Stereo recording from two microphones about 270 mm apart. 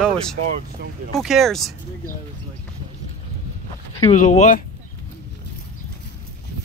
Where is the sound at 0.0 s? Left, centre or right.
Centre.